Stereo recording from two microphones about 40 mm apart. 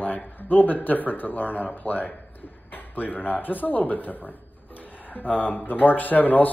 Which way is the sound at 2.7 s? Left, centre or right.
Left.